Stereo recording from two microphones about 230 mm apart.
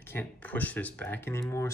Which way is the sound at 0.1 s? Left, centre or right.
Centre.